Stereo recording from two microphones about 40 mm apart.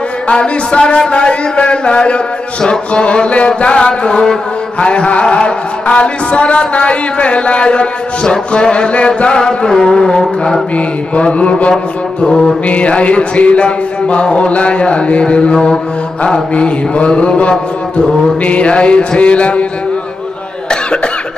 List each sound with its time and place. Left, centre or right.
0.3 s mantra: left
4.7 s mantra: left
11.7 s mantra: centre
12.6 s mantra: left